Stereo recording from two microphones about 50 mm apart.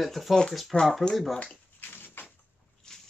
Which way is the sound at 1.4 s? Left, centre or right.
Left.